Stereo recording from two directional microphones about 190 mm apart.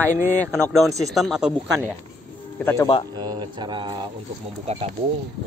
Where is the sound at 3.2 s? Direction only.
25° right (ahead or behind).